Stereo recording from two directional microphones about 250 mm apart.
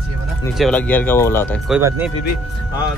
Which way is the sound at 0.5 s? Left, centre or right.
Centre.